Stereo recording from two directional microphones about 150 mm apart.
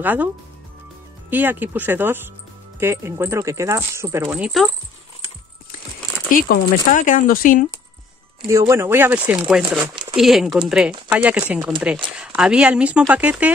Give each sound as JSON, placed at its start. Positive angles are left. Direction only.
{"t": 0.0, "sound": "speech", "side_deg": -10}
{"t": 1.3, "sound": "speech", "side_deg": -10}
{"t": 4.4, "sound": "speech", "side_deg": 0}
{"t": 6.3, "sound": "speech", "side_deg": 60}
{"t": 8.5, "sound": "speech", "side_deg": -20}